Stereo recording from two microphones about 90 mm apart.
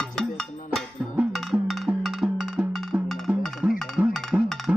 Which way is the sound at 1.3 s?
Centre (ahead or behind).